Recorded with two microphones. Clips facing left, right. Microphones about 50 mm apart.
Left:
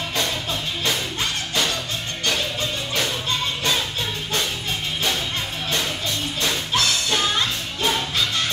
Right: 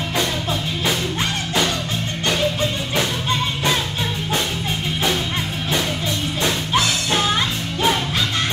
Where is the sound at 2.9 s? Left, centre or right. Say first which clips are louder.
Right 3 dB; centre.